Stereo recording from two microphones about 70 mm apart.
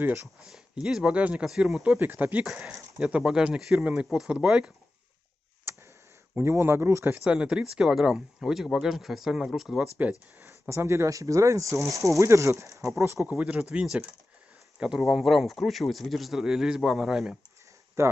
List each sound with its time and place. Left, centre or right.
0.4 s speech: centre
2.0 s speech: right
2.5 s speech: centre
5.7 s tick: right
6.3 s speech: right
7.2 s speech: centre
10.7 s speech: right
13.0 s speech: right
13.3 s speech: centre
15.0 s speech: centre
18.0 s speech: right